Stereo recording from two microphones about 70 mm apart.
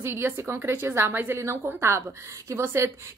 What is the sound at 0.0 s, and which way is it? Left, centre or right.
A woman's voice, right.